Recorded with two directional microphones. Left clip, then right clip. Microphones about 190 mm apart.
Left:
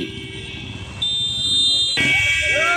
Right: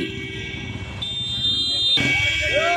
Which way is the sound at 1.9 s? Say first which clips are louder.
Left 3 dB; 60° right (ahead or behind).